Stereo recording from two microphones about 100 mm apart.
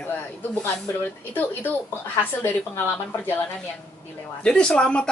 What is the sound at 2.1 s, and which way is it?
A woman's voice, 20° left (ahead or behind).